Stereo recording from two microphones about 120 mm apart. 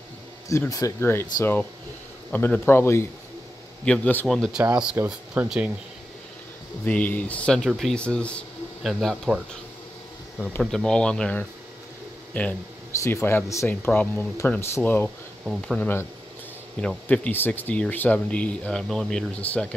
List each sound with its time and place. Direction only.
0.5 s speech: 25° left (ahead or behind)
4.3 s speech: centre (ahead or behind)
6.8 s speech: 15° left (ahead or behind)
10.4 s speech: 10° left (ahead or behind)